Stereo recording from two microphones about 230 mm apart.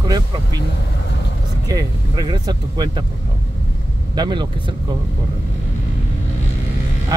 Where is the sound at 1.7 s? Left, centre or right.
Centre.